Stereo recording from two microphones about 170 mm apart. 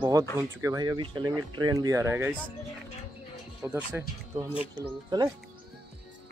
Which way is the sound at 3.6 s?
10° right (ahead or behind).